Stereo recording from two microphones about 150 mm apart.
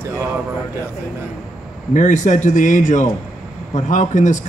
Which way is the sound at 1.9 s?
55° left (ahead or behind).